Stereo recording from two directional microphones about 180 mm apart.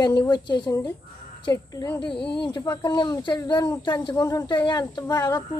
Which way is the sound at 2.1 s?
65° left (ahead or behind).